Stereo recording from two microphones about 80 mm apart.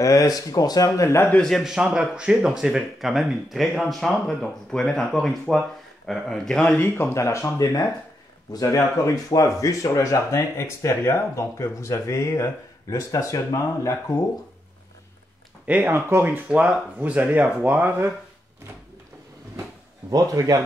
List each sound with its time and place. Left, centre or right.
0.0 s speech: left
1.4 s speech: centre
1.7 s speech: centre
6.8 s speech: left
15.6 s speech: centre
15.9 s speech: right
16.4 s speech: centre
20.1 s speech: right